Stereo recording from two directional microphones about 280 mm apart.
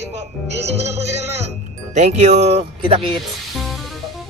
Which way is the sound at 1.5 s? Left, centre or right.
Right.